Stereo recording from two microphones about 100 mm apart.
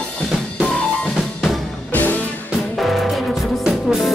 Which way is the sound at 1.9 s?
15° left (ahead or behind).